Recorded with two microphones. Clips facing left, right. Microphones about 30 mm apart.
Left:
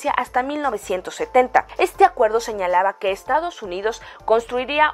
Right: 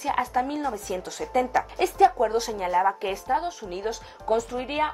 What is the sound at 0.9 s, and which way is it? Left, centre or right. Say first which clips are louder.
A woman's voice: left 9 dB; left.